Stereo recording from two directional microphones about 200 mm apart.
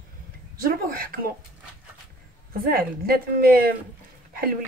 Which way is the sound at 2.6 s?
45° right (ahead or behind).